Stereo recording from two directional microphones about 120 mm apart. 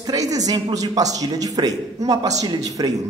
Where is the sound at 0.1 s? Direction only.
30° right (ahead or behind).